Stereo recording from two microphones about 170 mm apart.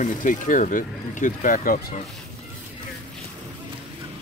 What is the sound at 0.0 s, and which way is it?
Speech, 50° left (ahead or behind).